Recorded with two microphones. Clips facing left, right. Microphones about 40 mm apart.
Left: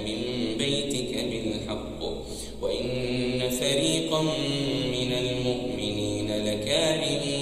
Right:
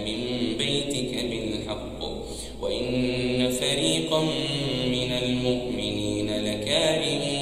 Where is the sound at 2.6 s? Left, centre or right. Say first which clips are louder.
Right 2 dB; right.